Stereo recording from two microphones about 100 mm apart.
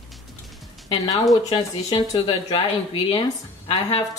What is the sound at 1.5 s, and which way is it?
Speech, 80° left.